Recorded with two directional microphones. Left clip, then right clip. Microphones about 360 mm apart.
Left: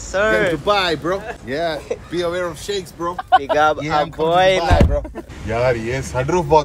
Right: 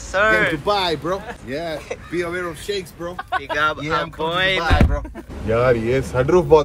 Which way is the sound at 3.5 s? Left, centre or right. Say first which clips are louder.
Left 4 dB; centre.